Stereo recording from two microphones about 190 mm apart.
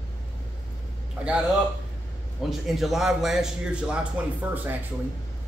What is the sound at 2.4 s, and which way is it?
A man's voice, centre (ahead or behind).